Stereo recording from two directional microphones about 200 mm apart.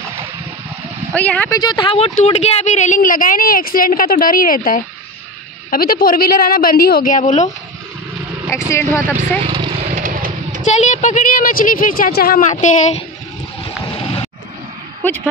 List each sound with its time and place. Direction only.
1.1 s speech: 10° left (ahead or behind)
1.6 s a woman's voice: 20° left (ahead or behind); by 7.4 s 40° left (ahead or behind)
8.5 s speech: 15° left (ahead or behind)
9.4 s speech: 20° right (ahead or behind)
10.0 s a sound: 40° right (ahead or behind)
10.6 s speech: 35° left (ahead or behind)
13.9 s a sound: 25° left (ahead or behind)